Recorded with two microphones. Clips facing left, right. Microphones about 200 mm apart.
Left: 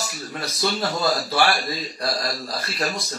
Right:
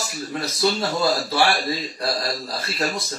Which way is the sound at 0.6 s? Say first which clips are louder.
Right 2 dB; 25° right (ahead or behind).